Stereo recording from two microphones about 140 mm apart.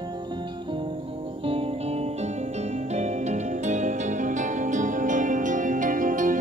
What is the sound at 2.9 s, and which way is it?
Music, 55° right (ahead or behind).